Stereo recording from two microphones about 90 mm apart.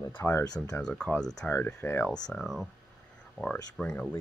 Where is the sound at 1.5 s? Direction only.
15° left (ahead or behind).